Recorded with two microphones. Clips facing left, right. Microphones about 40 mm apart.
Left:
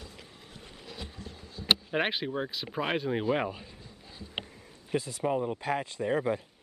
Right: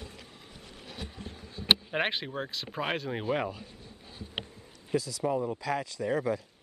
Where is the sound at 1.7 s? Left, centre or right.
Centre.